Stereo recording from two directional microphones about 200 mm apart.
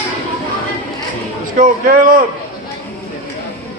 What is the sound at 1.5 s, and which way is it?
Speech, 45° right (ahead or behind).